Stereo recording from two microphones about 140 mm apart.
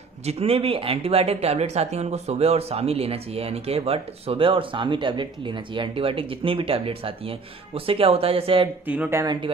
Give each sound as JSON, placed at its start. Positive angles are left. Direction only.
{"t": 0.2, "sound": "speech", "side_deg": -45}
{"t": 8.8, "sound": "speech", "side_deg": -10}
{"t": 9.2, "sound": "speech", "side_deg": -30}